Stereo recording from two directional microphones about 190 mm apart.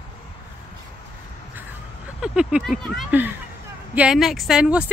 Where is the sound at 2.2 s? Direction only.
5° right (ahead or behind).